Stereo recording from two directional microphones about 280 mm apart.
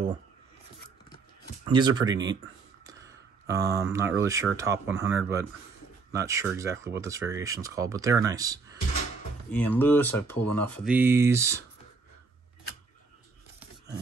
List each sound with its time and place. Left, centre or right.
1.6 s speech: centre
9.5 s speech: centre
10.9 s speech: centre